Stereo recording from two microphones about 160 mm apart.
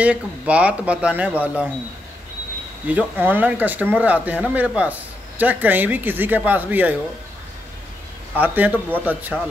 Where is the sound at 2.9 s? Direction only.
10° right (ahead or behind).